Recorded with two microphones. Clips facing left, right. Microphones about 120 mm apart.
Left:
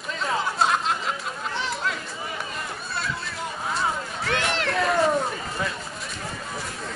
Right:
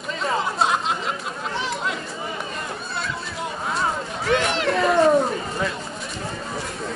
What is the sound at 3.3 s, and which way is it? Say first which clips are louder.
Hubbub: right 2 dB; centre (ahead or behind).